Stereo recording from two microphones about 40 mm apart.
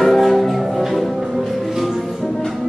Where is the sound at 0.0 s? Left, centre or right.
Centre.